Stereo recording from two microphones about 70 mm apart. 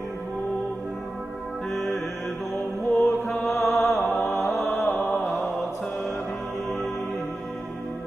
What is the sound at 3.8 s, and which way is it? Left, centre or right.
Music, left.